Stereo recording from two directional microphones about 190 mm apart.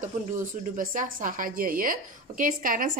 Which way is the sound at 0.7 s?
45° right (ahead or behind).